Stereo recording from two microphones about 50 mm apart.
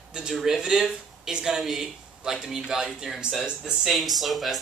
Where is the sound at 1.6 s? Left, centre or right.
Centre.